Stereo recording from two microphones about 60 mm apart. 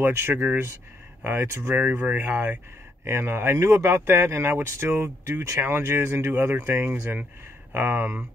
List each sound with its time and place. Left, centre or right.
0.0 s speech: right
1.8 s speech: right
3.1 s speech: right